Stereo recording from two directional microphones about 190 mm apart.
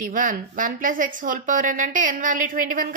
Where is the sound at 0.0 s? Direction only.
45° right (ahead or behind).